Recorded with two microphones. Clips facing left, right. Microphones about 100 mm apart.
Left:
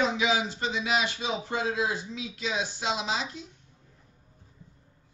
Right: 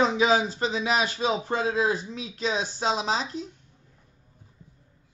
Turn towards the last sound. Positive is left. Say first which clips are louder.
# right 4 dB
turn(degrees=-40)  # may be behind; listen again after turning